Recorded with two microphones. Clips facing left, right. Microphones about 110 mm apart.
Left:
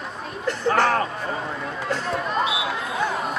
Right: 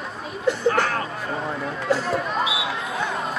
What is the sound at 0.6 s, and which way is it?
Speech, 30° left (ahead or behind).